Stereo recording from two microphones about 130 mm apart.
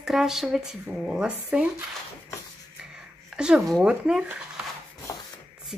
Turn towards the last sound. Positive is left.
turn(degrees=25)  # may be behind; listen again after turning